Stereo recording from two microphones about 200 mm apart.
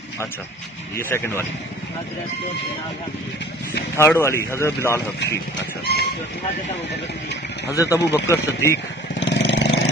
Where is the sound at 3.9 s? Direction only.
15° left (ahead or behind).